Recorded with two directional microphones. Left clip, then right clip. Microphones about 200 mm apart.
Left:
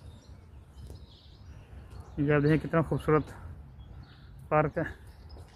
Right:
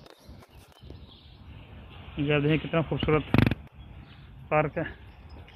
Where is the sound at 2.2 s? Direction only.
10° left (ahead or behind).